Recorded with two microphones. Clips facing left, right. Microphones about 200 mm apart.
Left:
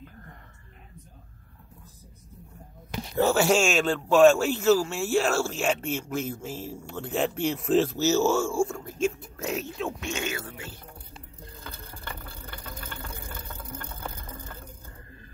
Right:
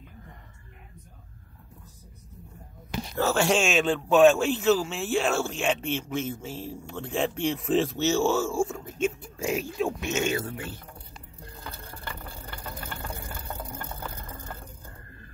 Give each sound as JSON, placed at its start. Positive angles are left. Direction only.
{"t": 2.9, "sound": "a sound", "side_deg": 15}
{"t": 3.4, "sound": "speech", "side_deg": 0}
{"t": 9.9, "sound": "speech", "side_deg": -20}